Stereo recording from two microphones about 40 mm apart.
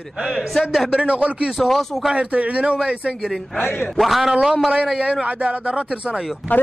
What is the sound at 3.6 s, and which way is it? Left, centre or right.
Speech, left.